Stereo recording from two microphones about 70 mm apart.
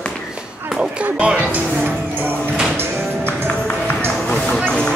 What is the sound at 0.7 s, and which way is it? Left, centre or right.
Speech, centre.